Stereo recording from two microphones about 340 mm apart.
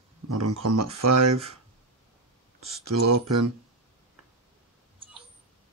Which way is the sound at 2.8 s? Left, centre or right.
Right.